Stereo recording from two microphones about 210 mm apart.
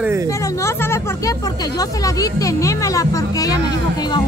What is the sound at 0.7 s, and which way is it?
Vehicle, 10° left (ahead or behind).